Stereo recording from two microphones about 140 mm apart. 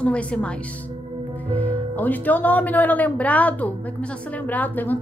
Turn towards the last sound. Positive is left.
turn(degrees=10)  # may be behind; listen again after turning